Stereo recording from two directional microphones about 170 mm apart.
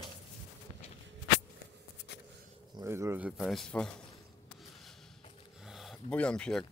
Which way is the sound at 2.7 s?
15° right (ahead or behind).